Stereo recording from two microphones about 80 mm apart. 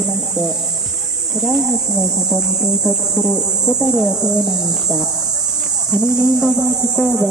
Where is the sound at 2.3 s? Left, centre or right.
Centre.